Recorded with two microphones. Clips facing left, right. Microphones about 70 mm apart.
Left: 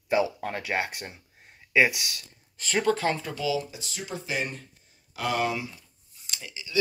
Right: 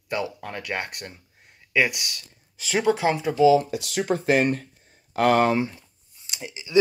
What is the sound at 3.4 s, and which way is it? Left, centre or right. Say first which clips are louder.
Speech: right 13 dB; right.